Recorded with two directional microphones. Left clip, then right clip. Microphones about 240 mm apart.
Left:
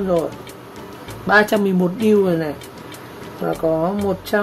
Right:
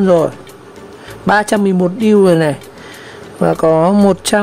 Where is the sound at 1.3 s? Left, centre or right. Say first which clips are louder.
Right 3 dB; right.